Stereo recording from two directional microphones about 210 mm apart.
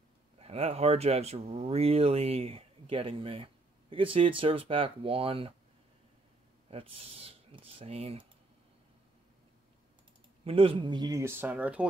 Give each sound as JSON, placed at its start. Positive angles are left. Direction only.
{"t": 0.4, "sound": "speech", "side_deg": -30}
{"t": 6.7, "sound": "speech", "side_deg": -25}
{"t": 10.4, "sound": "speech", "side_deg": -25}